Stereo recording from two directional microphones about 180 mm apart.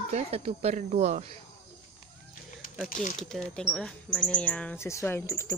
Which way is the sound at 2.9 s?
45° left (ahead or behind).